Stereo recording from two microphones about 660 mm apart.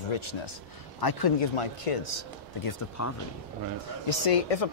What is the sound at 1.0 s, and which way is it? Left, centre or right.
Speech, left.